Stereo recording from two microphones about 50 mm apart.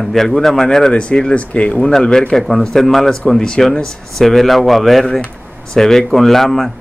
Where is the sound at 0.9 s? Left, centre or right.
Left.